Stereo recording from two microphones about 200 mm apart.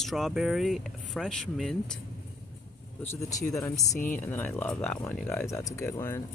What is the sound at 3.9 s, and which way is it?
Speech, 40° left (ahead or behind).